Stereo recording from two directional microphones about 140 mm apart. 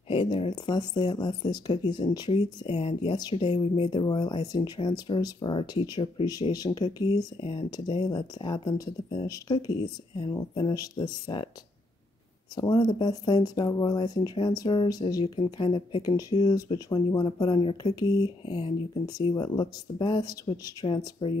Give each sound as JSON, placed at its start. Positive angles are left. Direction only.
{"t": 0.1, "sound": "speech", "side_deg": 40}
{"t": 12.5, "sound": "speech", "side_deg": 30}